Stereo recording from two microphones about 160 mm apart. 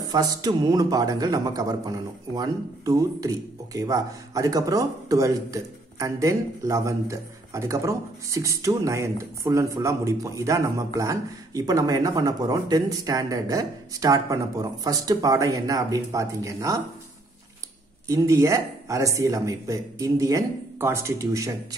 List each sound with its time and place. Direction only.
0.0 s speech: 25° right (ahead or behind)
18.0 s speech: 20° right (ahead or behind)